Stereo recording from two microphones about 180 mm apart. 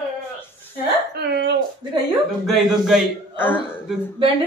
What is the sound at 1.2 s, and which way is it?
Speech, 65° right (ahead or behind).